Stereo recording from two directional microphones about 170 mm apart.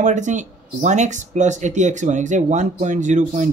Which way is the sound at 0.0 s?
45° right (ahead or behind).